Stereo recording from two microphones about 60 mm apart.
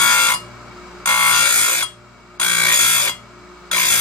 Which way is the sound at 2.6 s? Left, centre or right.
Left.